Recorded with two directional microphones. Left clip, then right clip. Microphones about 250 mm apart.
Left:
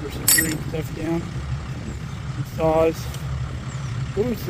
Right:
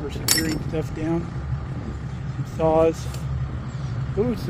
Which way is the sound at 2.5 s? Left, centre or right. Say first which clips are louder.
Even; centre.